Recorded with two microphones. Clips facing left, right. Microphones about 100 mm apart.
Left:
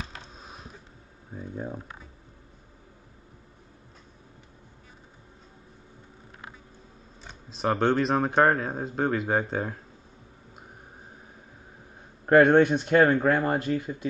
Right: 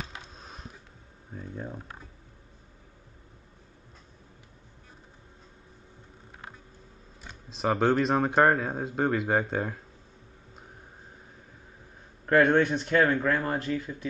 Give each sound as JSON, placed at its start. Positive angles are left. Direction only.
{"t": 0.4, "sound": "a sound", "side_deg": 5}
{"t": 1.3, "sound": "speech", "side_deg": 10}
{"t": 7.4, "sound": "speech", "side_deg": 0}
{"t": 12.4, "sound": "speech", "side_deg": 40}
{"t": 12.6, "sound": "speech", "side_deg": 20}
{"t": 12.9, "sound": "speech", "side_deg": 35}